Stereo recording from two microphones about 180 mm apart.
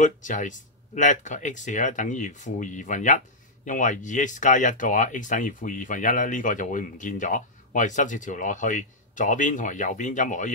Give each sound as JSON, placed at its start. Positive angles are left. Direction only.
{"t": 0.0, "sound": "speech", "side_deg": 45}